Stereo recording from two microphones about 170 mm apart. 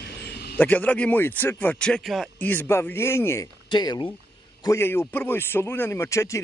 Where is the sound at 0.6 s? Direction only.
10° left (ahead or behind).